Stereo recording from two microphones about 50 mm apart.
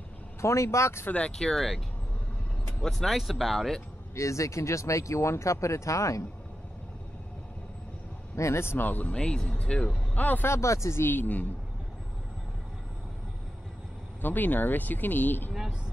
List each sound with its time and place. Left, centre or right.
0.4 s speech: left
1.3 s speech: centre
2.8 s speech: centre
4.1 s speech: left
8.4 s speech: left
8.8 s speech: left
9.1 s speech: centre
10.4 s speech: left
11.0 s speech: left
14.2 s speech: left